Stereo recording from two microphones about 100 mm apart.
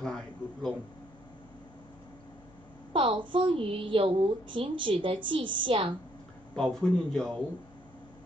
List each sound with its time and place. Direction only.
0.0 s a sound: 5° left (ahead or behind)
2.9 s a woman's voice: 60° right (ahead or behind)
6.5 s a man's voice: 5° left (ahead or behind)